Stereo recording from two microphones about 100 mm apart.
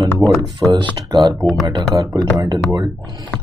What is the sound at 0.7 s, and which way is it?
Speech, 50° right (ahead or behind).